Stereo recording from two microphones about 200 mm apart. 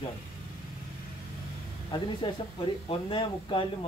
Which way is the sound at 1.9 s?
20° left (ahead or behind).